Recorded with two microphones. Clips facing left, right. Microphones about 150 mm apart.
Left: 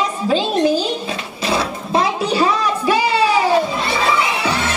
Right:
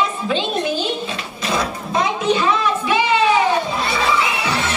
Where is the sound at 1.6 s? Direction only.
35° left (ahead or behind).